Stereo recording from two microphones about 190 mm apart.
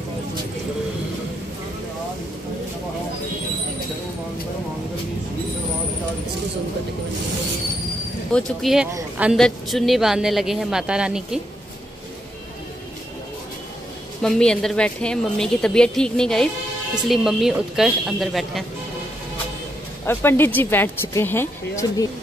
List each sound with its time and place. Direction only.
8.3 s a woman's voice: 5° left (ahead or behind)
14.2 s a woman's voice: 5° left (ahead or behind)
20.1 s speech: 10° left (ahead or behind)